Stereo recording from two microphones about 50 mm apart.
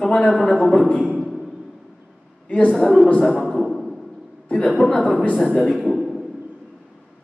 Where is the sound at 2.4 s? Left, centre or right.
Left.